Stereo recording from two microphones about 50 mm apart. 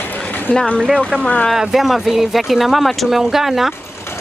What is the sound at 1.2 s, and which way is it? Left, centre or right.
Speech, left.